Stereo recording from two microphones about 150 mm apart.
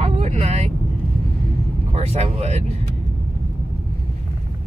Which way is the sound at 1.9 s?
45° right (ahead or behind).